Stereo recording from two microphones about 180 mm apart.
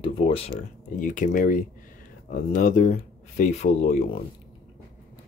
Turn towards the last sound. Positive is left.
turn(degrees=40)  # may be behind; listen again after turning